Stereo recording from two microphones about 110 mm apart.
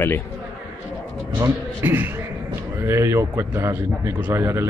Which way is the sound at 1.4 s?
20° right (ahead or behind).